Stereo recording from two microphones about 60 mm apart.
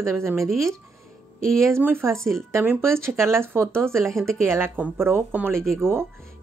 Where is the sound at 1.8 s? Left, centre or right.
Right.